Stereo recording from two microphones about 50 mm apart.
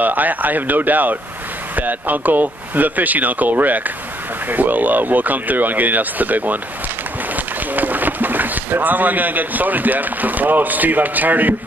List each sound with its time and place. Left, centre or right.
0.0 s speech: right